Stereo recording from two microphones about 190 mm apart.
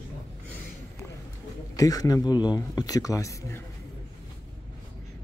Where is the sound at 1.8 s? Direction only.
20° left (ahead or behind).